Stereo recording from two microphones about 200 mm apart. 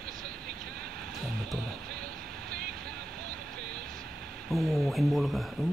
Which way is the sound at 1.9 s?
50° right (ahead or behind).